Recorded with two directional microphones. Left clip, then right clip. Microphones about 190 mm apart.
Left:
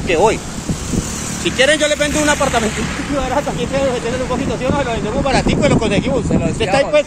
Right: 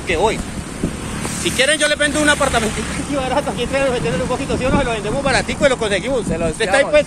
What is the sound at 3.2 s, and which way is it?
Speech, 25° left (ahead or behind).